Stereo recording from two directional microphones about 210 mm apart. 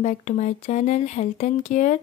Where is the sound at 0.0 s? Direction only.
35° left (ahead or behind).